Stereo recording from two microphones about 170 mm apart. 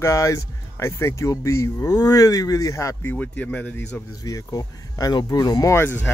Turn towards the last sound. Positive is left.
turn(degrees=15)  # may be behind; listen again after turning